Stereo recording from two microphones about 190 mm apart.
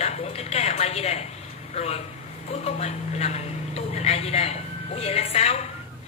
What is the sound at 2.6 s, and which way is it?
Speech, 35° left (ahead or behind).